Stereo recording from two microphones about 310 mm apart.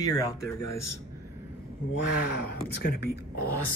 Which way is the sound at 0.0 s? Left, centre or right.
Centre.